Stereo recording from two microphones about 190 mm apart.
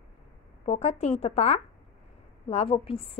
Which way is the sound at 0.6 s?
35° left (ahead or behind).